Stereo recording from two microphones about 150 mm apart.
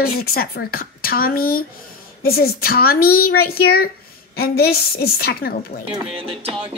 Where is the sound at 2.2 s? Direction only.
90° left.